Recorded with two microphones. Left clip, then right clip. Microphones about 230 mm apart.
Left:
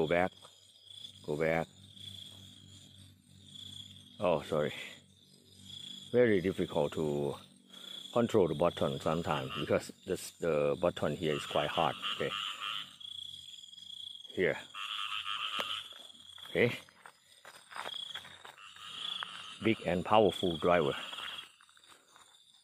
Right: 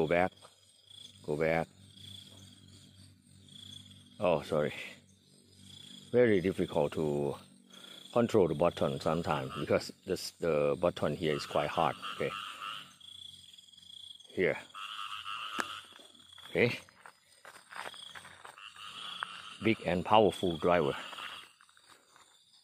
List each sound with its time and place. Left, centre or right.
0.0 s speech: centre
4.2 s speech: centre
6.1 s speech: centre
14.3 s frog: centre
16.3 s a sound: centre
19.3 s frog: centre
20.7 s cricket: centre